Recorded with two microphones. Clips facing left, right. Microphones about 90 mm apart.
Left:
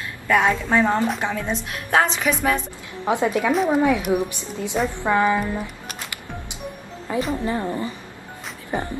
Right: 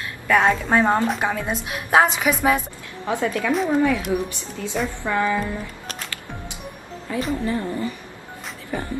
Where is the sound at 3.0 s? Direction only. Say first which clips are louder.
Left 3 dB; 20° left (ahead or behind).